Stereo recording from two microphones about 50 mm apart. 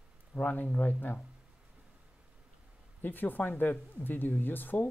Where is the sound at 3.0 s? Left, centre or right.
Left.